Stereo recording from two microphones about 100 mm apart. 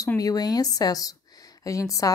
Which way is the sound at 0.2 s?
40° left (ahead or behind).